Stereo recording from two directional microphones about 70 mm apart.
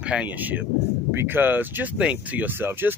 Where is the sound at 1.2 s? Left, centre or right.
Right.